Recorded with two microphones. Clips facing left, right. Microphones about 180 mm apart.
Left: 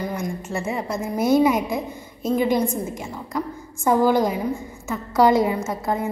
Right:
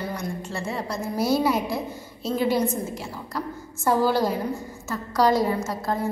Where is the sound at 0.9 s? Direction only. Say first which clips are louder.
Left 3 dB; 55° left (ahead or behind).